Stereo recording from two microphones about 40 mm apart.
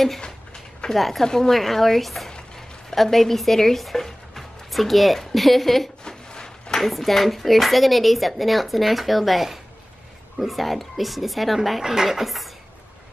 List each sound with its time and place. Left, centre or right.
0.9 s a woman's voice: centre
1.2 s a woman's voice: centre
6.0 s a sound: centre
6.8 s a woman's voice: centre
11.8 s speech: centre